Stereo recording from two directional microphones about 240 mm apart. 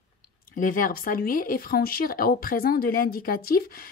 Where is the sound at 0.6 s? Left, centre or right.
Left.